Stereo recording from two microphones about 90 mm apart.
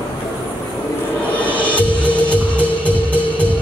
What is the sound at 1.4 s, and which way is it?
Music, 15° left (ahead or behind).